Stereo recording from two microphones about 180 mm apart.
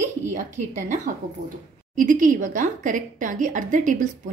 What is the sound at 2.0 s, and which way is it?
A woman's voice, 45° right (ahead or behind).